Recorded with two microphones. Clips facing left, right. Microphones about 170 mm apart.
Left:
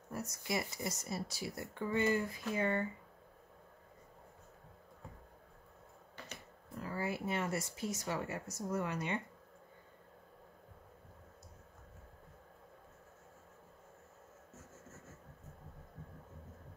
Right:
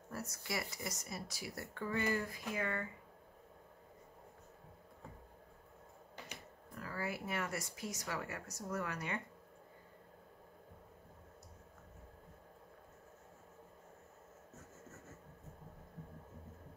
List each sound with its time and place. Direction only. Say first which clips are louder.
0.1 s speech: left 4 dB; 20° left (ahead or behind)
6.7 s speech: left 3 dB; 25° left (ahead or behind)